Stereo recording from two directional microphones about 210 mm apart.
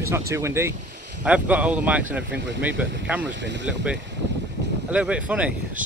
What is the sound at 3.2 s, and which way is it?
Speech, 55° right (ahead or behind).